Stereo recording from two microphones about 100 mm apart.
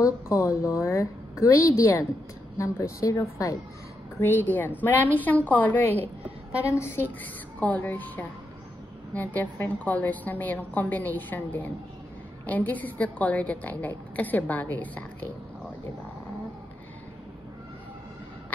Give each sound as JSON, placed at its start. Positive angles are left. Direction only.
{"t": 0.0, "sound": "a woman's voice", "side_deg": 30}
{"t": 4.2, "sound": "a woman's voice", "side_deg": 20}
{"t": 7.6, "sound": "a woman's voice", "side_deg": 15}